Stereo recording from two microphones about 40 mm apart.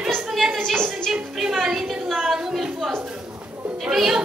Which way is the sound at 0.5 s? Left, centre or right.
Centre.